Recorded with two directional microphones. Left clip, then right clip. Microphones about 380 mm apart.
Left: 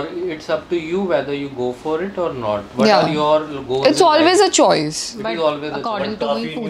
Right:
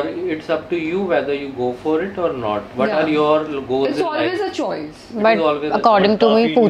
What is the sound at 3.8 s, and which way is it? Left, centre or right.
A woman's voice, left.